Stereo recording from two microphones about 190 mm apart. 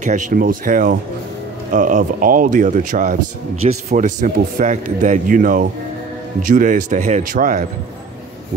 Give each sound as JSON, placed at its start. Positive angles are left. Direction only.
{"t": 0.0, "sound": "a man's voice", "side_deg": -40}